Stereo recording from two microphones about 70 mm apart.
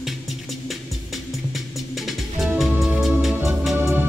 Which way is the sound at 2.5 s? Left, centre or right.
Centre.